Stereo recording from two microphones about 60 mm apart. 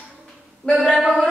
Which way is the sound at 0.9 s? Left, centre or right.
Right.